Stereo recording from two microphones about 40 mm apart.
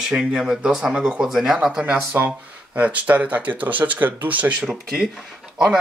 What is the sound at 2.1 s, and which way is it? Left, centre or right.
Speech, right.